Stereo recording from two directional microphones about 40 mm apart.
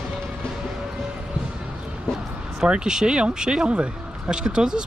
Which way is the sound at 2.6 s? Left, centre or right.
Centre.